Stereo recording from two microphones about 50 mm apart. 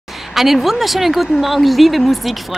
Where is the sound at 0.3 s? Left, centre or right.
Centre.